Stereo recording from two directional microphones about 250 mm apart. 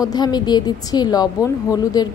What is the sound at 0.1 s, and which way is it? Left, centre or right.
A woman's voice, centre.